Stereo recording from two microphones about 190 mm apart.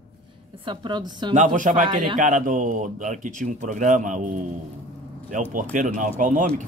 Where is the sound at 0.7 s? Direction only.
25° right (ahead or behind).